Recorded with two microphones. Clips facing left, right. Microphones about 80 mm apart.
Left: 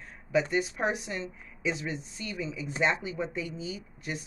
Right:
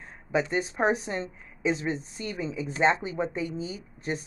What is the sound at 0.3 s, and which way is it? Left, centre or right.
Speech, right.